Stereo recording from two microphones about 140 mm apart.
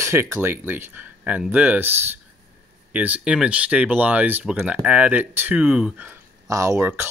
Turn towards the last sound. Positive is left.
turn(degrees=-15)  # may be behind; listen again after turning